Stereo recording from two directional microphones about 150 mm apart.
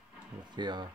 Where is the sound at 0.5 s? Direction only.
30° right (ahead or behind).